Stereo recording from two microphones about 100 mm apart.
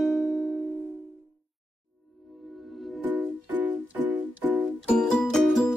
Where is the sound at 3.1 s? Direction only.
15° right (ahead or behind).